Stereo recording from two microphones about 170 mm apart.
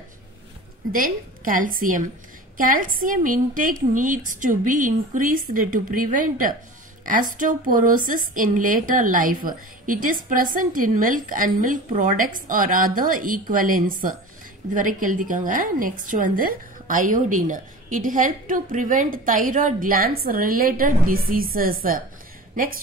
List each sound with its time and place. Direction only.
0.9 s a woman's voice: 55° right (ahead or behind)